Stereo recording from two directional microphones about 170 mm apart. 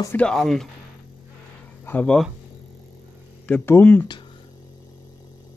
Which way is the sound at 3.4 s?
10° left (ahead or behind).